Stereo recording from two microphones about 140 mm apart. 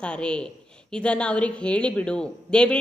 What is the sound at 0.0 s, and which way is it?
A woman's voice, 5° left (ahead or behind).